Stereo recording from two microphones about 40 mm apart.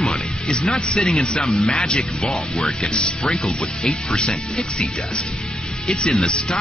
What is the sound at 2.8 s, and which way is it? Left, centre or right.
Speech, centre.